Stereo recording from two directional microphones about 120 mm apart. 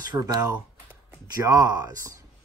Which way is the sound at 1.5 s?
30° right (ahead or behind).